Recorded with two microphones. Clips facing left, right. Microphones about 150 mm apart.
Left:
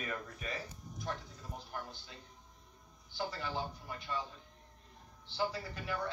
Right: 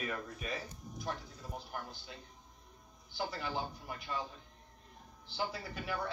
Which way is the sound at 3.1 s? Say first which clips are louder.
Right 1 dB; 10° right (ahead or behind).